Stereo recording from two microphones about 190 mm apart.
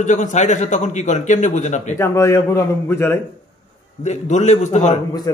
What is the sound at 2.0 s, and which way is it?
A man's voice, 15° left (ahead or behind).